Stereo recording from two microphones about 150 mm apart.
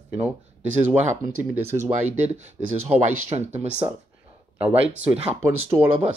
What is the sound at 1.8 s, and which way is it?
Speech, 50° right (ahead or behind).